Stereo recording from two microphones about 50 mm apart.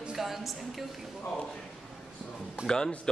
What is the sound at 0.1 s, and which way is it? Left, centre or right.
Speech, centre.